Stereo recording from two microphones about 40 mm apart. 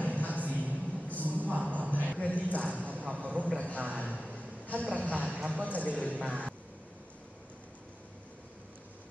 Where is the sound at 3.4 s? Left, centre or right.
Left.